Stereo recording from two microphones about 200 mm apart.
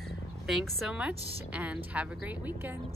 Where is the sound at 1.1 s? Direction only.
30° right (ahead or behind).